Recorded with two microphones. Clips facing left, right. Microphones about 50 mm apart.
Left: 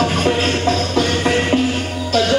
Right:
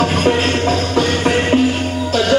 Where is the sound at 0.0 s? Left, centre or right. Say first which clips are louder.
Right 2 dB; centre.